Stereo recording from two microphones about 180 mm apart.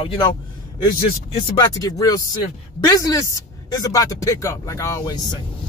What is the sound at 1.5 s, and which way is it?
Speech, 20° left (ahead or behind).